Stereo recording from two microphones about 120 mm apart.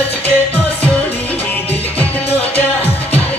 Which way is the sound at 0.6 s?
10° left (ahead or behind).